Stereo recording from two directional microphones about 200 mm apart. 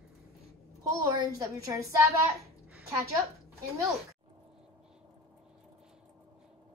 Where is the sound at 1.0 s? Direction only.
15° right (ahead or behind).